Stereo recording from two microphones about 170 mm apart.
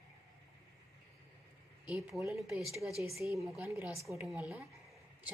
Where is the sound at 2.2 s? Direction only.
Centre (ahead or behind).